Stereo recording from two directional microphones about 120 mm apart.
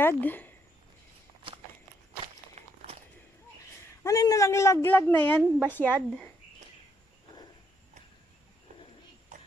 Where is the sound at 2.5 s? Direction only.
65° right (ahead or behind).